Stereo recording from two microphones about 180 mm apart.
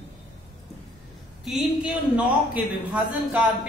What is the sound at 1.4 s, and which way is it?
A man's voice, 5° right (ahead or behind).